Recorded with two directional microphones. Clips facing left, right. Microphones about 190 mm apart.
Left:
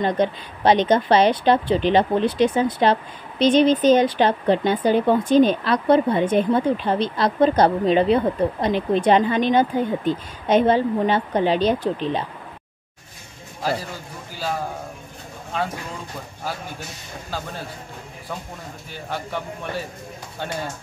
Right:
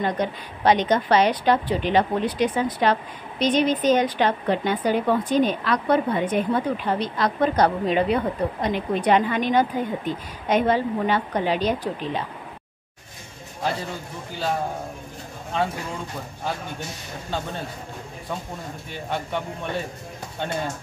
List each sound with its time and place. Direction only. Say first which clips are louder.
0.0 s speech: left 4 dB; 30° left (ahead or behind)
18.9 s speech: right 1 dB; centre (ahead or behind)